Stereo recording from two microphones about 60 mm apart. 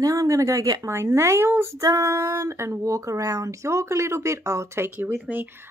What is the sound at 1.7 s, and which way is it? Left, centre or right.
Female singing, right.